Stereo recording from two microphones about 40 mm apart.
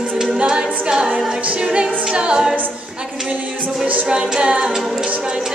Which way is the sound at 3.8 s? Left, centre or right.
Right.